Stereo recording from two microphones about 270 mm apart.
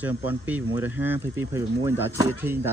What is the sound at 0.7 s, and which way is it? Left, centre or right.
Speech, left.